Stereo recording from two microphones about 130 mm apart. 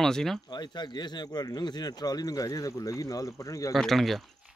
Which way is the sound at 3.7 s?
Centre (ahead or behind).